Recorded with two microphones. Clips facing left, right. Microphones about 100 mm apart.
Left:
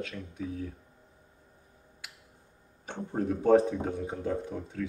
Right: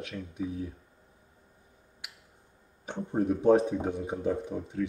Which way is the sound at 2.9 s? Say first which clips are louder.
Right 3 dB; 15° right (ahead or behind).